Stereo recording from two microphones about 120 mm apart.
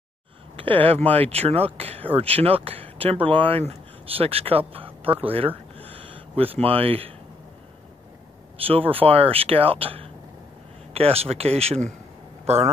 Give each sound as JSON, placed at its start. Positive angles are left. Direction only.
{"t": 0.6, "sound": "speech", "side_deg": -50}
{"t": 5.9, "sound": "a sound", "side_deg": -55}
{"t": 8.6, "sound": "speech", "side_deg": -50}